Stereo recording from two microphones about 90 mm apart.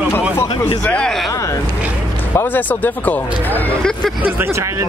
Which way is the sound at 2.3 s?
20° left (ahead or behind).